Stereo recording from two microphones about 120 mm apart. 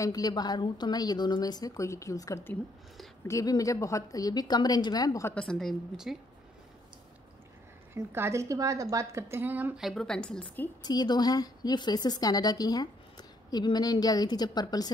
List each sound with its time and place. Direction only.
0.0 s a woman's voice: 30° left (ahead or behind)
5.3 s a woman's voice: 5° left (ahead or behind)
7.9 s a woman's voice: 20° right (ahead or behind)
9.8 s a woman's voice: centre (ahead or behind)
10.8 s a woman's voice: 35° left (ahead or behind)